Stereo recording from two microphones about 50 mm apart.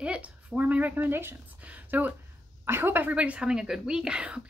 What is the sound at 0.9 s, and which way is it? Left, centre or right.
Speech, right.